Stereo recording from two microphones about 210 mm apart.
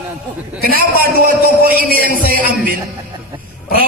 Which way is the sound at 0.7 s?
45° right (ahead or behind).